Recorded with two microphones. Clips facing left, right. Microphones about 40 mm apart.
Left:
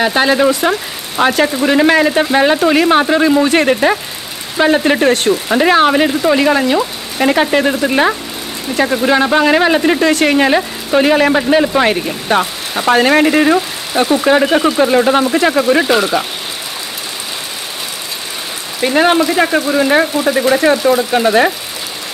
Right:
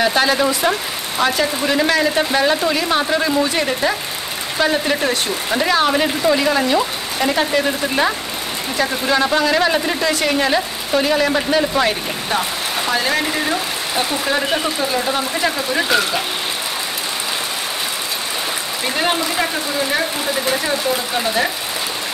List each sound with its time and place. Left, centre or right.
0.0 s speech: left
3.4 s speech: left
11.3 s speech: left
15.8 s speech: centre
18.9 s speech: left
19.3 s speech: left
20.5 s speech: left